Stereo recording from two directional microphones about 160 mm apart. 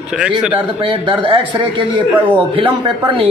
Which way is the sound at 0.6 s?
30° right (ahead or behind).